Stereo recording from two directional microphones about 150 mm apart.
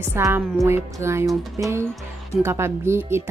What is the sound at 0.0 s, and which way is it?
Speech, 15° right (ahead or behind).